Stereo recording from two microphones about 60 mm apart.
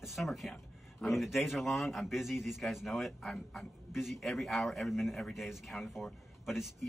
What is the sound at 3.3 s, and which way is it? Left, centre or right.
Speech, centre.